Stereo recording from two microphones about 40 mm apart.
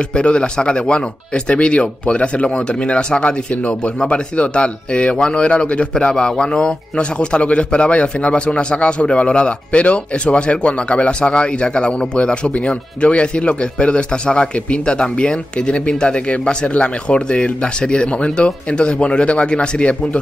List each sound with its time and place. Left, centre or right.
0.1 s speech: left